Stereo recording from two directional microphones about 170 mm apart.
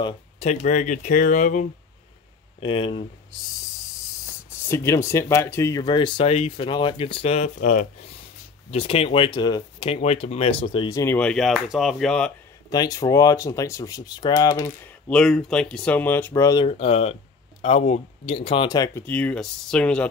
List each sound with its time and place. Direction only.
0.0 s speech: 40° left (ahead or behind)
2.6 s speech: 30° left (ahead or behind)
4.6 s speech: 15° left (ahead or behind); by 7.5 s 40° left (ahead or behind)
7.6 s speech: 55° left (ahead or behind)
8.6 s speech: 35° left (ahead or behind)
9.9 s speech: 40° left (ahead or behind)
10.9 s speech: 20° left (ahead or behind)
11.1 s speech: 5° left (ahead or behind)
12.6 s speech: 20° left (ahead or behind)
15.0 s speech: 5° left (ahead or behind)
16.4 s speech: 30° left (ahead or behind)
19.0 s speech: 10° left (ahead or behind)